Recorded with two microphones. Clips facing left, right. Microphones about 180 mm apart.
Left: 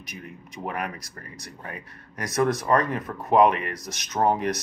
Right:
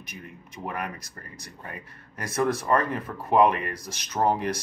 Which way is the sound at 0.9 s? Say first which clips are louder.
Left 2 dB; 25° right (ahead or behind).